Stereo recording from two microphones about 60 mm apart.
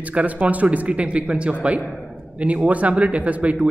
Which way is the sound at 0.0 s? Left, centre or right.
Right.